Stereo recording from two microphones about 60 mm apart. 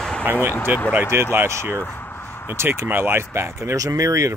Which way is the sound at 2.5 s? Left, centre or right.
Right.